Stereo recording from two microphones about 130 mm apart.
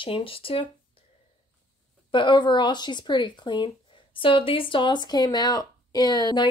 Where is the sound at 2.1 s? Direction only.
35° left (ahead or behind).